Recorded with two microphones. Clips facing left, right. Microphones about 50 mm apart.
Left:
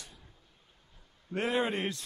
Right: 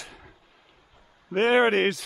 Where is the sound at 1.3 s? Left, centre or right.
Right.